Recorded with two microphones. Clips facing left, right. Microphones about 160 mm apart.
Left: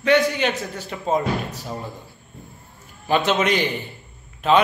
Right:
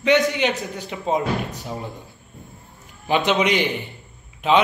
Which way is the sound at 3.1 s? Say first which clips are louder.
Even; 15° right (ahead or behind).